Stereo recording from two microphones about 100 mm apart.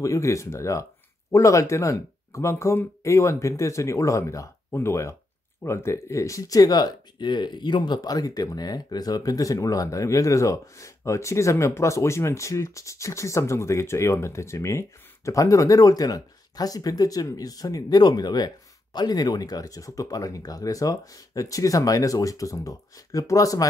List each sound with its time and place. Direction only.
0.0 s speech: 30° left (ahead or behind)